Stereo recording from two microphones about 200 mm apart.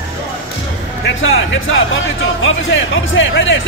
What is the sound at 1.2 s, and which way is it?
Speech, 75° left (ahead or behind).